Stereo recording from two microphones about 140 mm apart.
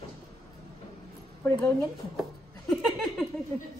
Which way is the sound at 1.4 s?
15° left (ahead or behind).